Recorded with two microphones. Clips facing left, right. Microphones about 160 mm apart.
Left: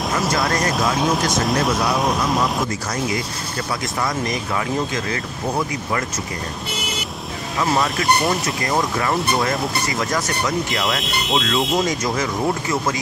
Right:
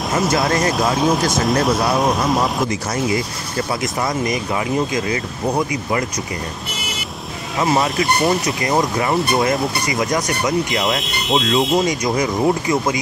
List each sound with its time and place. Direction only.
0.2 s speech: centre (ahead or behind)
4.9 s speech: 15° right (ahead or behind)
7.8 s speech: centre (ahead or behind)
8.6 s speech: 20° right (ahead or behind)
10.7 s speech: centre (ahead or behind)
12.0 s speech: 15° right (ahead or behind)